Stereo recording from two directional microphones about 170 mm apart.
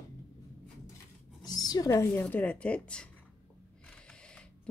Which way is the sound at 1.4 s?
25° left (ahead or behind).